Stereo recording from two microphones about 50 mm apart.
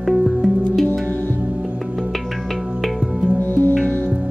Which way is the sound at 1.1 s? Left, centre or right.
Left.